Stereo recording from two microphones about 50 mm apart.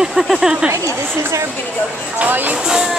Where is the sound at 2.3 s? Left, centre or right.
Right.